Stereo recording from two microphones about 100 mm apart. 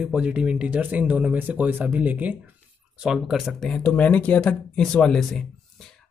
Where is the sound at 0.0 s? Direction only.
10° right (ahead or behind).